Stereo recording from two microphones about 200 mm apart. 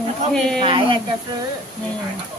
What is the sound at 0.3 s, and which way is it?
Speech, 5° left (ahead or behind).